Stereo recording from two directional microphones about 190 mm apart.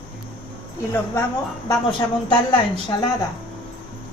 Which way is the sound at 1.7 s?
25° left (ahead or behind).